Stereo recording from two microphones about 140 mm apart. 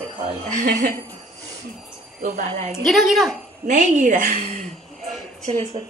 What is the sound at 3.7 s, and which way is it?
Speech, 65° right (ahead or behind).